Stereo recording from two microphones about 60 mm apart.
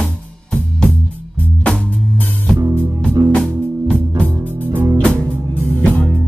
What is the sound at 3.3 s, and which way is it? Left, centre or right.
Music, centre.